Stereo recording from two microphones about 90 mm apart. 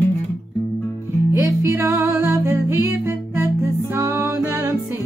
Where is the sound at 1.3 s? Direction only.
30° right (ahead or behind).